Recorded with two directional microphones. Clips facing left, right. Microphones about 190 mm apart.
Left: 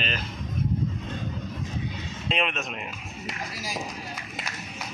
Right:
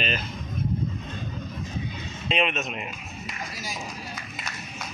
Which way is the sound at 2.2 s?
Centre (ahead or behind).